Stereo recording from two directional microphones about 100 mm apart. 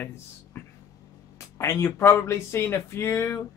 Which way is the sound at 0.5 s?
25° left (ahead or behind).